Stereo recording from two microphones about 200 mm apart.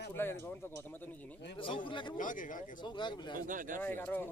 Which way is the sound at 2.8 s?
25° left (ahead or behind).